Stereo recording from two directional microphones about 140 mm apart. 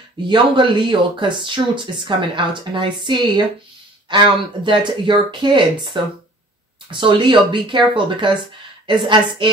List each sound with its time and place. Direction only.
0.3 s speech: 35° right (ahead or behind)